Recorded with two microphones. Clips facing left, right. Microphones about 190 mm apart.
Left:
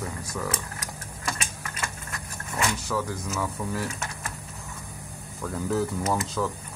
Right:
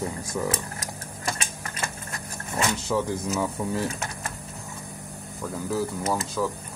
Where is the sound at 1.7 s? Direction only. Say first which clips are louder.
Right 2 dB; 30° right (ahead or behind).